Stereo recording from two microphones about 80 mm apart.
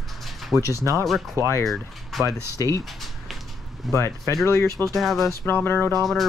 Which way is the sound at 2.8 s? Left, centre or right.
Centre.